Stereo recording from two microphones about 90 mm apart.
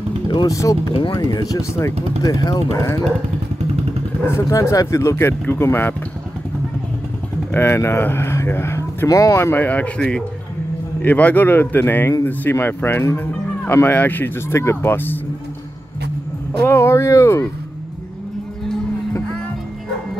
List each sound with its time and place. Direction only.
0.5 s speech: 35° left (ahead or behind)
4.4 s speech: 35° left (ahead or behind)
5.1 s speech: 20° left (ahead or behind)
7.5 s speech: 25° left (ahead or behind)
16.6 s speech: 30° left (ahead or behind)